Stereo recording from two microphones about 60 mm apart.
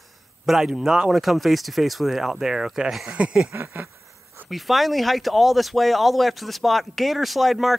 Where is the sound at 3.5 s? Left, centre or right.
Right.